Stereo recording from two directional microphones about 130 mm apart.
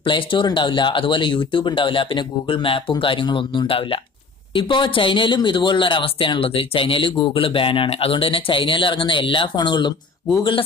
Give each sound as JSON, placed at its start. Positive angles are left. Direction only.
{"t": 0.0, "sound": "speech", "side_deg": 40}